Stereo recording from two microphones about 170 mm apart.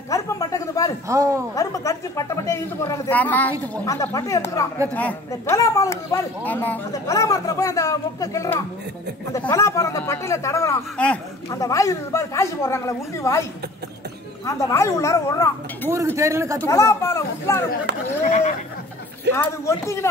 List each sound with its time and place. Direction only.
0.1 s a sound: 20° left (ahead or behind)
1.0 s speech: 20° right (ahead or behind)
1.5 s speech: 20° left (ahead or behind)
11.5 s speech: 20° left (ahead or behind)
16.2 s speech: 15° right (ahead or behind)
16.6 s speech: 15° left (ahead or behind)
18.2 s speech: 45° left (ahead or behind)
19.3 s speech: 15° left (ahead or behind)